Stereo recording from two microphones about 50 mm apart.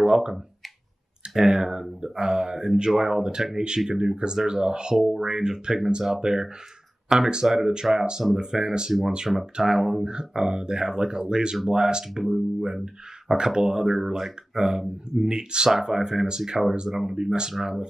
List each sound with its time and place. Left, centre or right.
1.3 s speech: centre
9.3 s speech: centre